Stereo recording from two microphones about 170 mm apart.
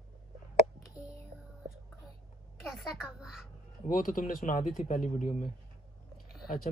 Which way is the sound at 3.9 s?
55° left (ahead or behind).